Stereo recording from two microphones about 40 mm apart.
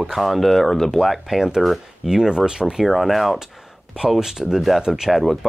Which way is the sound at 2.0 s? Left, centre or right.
Centre.